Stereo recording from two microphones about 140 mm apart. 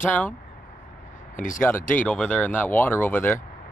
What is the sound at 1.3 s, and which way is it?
Speech, 70° left (ahead or behind).